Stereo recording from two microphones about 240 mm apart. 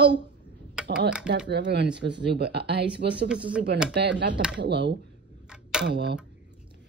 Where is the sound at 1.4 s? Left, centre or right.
Right.